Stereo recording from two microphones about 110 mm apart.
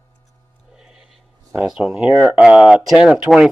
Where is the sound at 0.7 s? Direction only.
5° right (ahead or behind).